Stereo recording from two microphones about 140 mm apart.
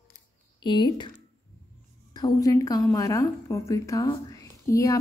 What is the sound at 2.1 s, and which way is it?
A woman's voice, 25° left (ahead or behind).